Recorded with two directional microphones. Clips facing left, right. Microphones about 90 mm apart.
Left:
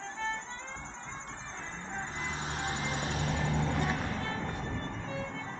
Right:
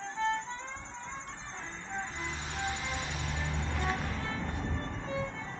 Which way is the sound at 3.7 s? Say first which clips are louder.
Left 2 dB; 15° left (ahead or behind).